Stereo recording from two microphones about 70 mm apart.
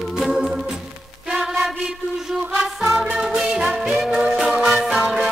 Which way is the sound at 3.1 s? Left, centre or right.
Centre.